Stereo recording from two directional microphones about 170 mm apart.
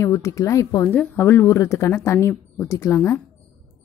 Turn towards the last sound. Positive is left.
turn(degrees=15)  # may be behind; listen again after turning